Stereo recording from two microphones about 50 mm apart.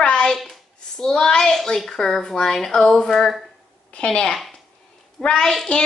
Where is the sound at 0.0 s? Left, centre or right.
Centre.